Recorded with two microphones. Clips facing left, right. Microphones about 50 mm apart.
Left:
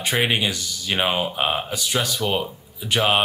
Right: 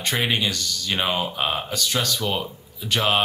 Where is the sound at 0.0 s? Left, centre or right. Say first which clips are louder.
Left 2 dB; centre.